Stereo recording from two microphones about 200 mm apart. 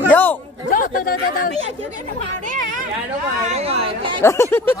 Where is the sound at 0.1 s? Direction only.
10° left (ahead or behind).